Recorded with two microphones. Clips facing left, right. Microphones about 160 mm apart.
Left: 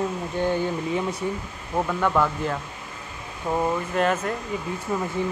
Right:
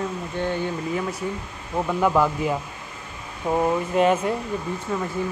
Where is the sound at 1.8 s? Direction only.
10° right (ahead or behind).